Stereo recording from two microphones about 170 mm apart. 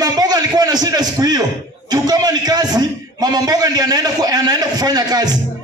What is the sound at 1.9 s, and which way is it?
A man's voice, 25° right (ahead or behind).